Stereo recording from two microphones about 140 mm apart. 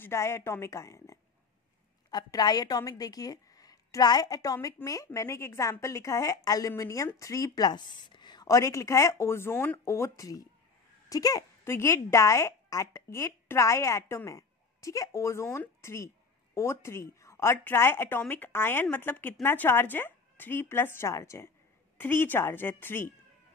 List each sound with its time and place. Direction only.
0.0 s a woman's voice: 20° left (ahead or behind)